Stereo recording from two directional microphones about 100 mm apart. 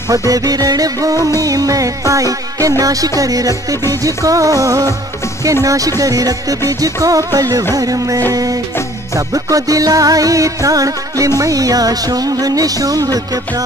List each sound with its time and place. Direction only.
0.3 s music: 40° right (ahead or behind)